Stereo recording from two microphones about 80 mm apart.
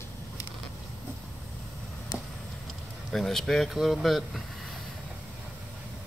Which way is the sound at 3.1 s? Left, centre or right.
Centre.